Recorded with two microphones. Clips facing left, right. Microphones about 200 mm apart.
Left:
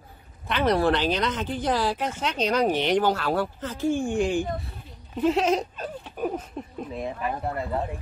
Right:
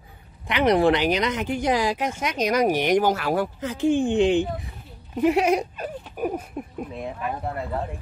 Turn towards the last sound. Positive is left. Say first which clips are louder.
# even
turn(degrees=0)  # may be behind; listen again after turning